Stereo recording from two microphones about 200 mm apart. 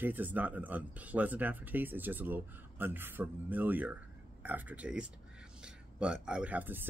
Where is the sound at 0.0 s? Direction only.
10° right (ahead or behind).